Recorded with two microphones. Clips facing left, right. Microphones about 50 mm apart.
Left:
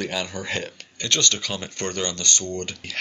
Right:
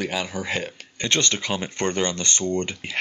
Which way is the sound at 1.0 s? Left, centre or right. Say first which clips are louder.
Right 1 dB; right.